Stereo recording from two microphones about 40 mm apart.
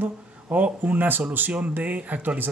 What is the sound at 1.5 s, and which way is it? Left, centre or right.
Speech, right.